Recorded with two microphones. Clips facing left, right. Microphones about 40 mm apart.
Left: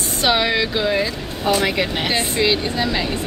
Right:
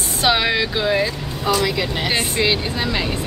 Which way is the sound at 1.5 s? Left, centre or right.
Left.